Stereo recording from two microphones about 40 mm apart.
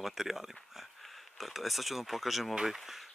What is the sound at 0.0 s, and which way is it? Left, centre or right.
Speech, centre.